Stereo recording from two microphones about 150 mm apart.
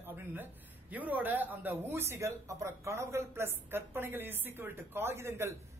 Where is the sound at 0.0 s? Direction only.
15° right (ahead or behind).